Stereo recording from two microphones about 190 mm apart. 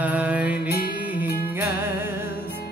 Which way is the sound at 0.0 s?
5° right (ahead or behind).